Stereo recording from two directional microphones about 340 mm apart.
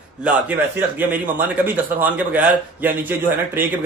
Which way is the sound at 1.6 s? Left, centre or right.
Centre.